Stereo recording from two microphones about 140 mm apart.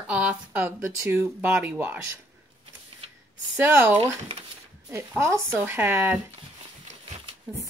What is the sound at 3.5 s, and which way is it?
Speech, 15° right (ahead or behind).